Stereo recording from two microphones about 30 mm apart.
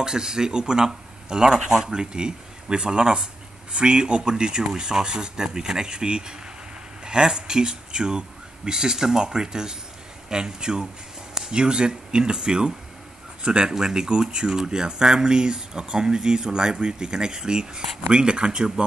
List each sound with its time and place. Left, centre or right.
0.0 s speech: right